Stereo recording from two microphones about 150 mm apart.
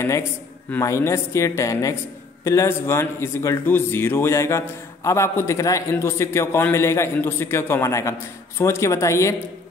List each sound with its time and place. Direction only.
0.7 s speech: 20° left (ahead or behind)